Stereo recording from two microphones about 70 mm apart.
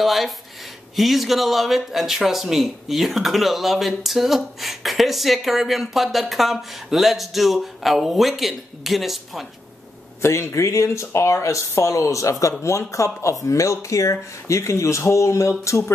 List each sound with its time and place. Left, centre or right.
0.0 s speech: centre
10.2 s speech: left